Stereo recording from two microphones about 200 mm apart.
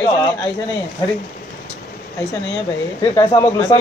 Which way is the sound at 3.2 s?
25° left (ahead or behind).